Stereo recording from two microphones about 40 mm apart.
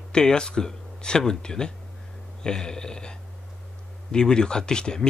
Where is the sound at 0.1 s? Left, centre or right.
Left.